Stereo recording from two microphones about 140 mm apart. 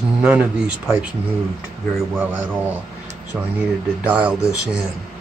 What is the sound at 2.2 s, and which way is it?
Speech, 10° right (ahead or behind).